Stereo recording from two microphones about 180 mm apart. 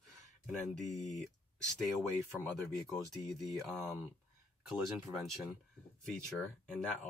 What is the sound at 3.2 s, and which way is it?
Speech, centre (ahead or behind).